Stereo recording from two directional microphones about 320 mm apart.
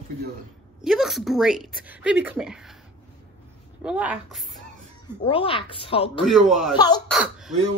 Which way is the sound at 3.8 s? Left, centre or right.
Centre.